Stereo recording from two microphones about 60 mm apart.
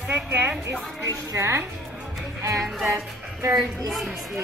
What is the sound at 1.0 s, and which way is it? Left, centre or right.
Speech, right.